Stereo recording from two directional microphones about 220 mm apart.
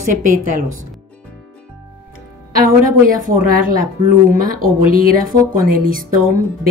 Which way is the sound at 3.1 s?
40° right (ahead or behind).